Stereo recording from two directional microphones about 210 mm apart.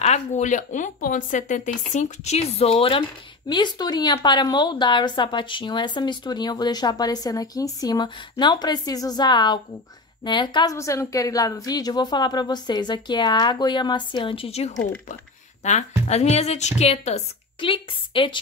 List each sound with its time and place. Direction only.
0.0 s a woman's voice: 35° left (ahead or behind)